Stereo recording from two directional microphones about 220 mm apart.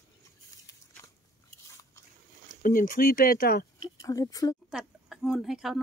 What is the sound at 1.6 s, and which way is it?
Biting, 15° left (ahead or behind).